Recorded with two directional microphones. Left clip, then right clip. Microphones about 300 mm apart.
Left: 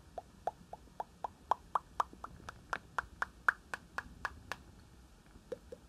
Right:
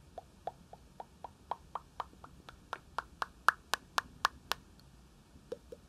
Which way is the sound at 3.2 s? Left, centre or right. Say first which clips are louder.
Right 3 dB; right.